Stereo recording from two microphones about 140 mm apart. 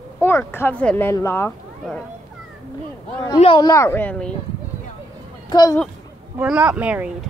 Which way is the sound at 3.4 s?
40° left (ahead or behind).